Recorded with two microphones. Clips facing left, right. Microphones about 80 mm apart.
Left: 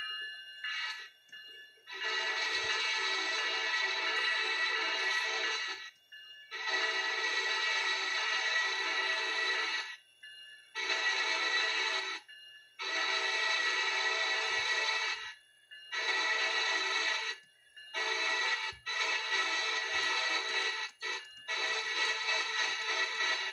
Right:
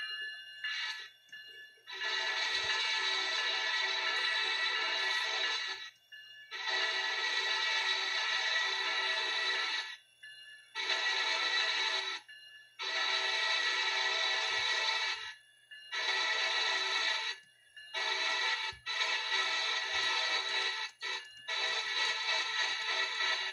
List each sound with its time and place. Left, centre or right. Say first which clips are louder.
1.9 s music: left 1 dB; centre